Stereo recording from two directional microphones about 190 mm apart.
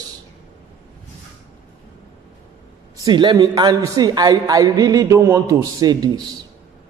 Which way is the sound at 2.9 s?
20° right (ahead or behind).